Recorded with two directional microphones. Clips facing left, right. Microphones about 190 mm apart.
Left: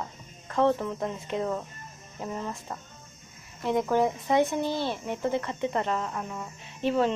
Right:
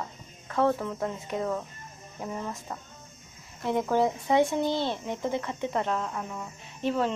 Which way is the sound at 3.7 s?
10° right (ahead or behind).